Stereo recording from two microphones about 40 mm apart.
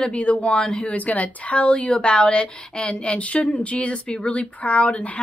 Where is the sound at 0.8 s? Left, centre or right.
Left.